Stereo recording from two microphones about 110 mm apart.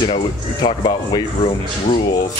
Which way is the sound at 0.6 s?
40° left (ahead or behind).